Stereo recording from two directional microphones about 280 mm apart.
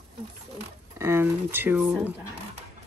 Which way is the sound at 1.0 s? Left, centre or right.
Centre.